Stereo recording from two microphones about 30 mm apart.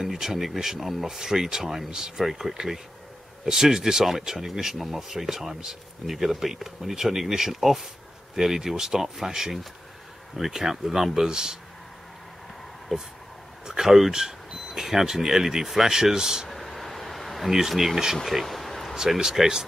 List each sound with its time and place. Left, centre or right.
0.0 s speech: centre
12.9 s speech: centre
16.4 s a sound: centre
17.5 s speech: centre
19.1 s speech: centre